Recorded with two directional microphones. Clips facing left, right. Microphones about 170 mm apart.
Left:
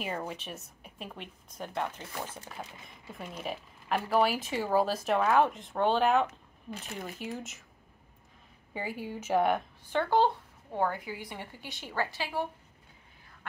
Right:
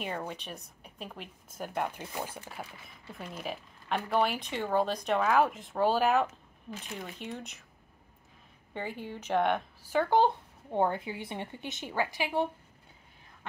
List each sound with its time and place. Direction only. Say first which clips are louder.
0.0 s speech: left 1 dB; 5° left (ahead or behind)
3.1 s speech: left 1 dB; centre (ahead or behind)
8.7 s speech: left 1 dB; 10° left (ahead or behind)
9.8 s speech: right 1 dB; 10° right (ahead or behind)